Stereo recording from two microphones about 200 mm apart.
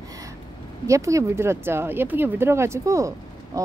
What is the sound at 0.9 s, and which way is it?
Speech, 15° right (ahead or behind).